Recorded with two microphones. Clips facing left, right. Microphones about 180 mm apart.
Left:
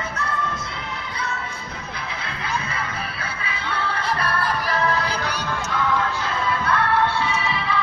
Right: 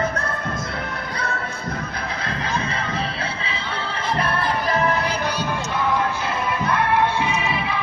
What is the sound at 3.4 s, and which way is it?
Music, 20° right (ahead or behind).